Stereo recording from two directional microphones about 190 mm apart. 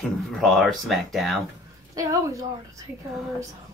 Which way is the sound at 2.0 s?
15° right (ahead or behind).